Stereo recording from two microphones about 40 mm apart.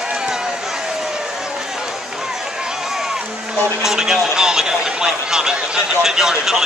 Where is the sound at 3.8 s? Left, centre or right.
Centre.